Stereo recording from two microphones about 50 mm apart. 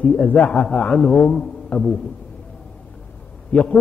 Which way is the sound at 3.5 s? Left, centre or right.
Left.